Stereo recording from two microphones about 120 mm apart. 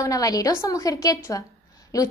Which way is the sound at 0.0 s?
30° left (ahead or behind).